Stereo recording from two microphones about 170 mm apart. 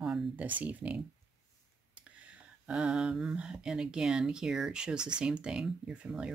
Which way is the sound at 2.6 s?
5° right (ahead or behind).